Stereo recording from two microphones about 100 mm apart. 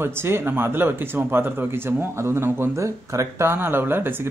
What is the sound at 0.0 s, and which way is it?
Speech, 25° right (ahead or behind).